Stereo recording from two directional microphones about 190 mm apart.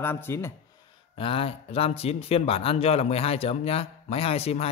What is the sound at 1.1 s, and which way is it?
Speech, 30° left (ahead or behind).